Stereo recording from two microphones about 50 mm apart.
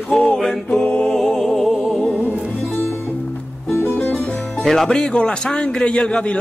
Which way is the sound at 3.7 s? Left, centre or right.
Left.